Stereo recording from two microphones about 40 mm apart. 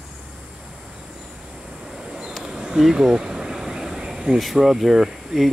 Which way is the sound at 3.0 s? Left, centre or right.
Centre.